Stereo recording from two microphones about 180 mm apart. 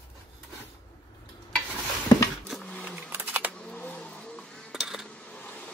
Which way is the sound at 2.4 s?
5° left (ahead or behind).